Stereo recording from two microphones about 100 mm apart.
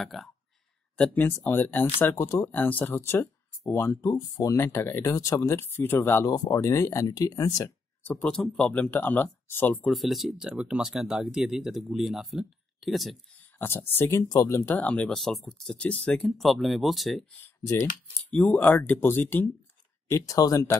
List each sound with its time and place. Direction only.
0.0 s speech: centre (ahead or behind)
1.4 s speech: 20° left (ahead or behind)
6.2 s speech: 40° left (ahead or behind)
8.0 s speech: 15° left (ahead or behind)
9.8 s speech: centre (ahead or behind)
13.6 s speech: 20° left (ahead or behind)
15.0 s speech: centre (ahead or behind)
15.8 s speech: 15° left (ahead or behind)
16.2 s speech: centre (ahead or behind)
18.3 s speech: 15° left (ahead or behind)
20.1 s speech: 35° left (ahead or behind)